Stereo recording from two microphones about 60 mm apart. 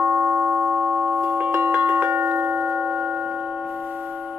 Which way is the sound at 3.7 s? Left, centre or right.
Right.